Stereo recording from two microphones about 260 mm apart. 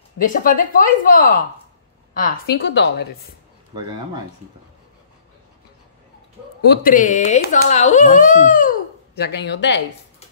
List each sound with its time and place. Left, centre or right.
0.2 s speech: left
6.7 s speech: left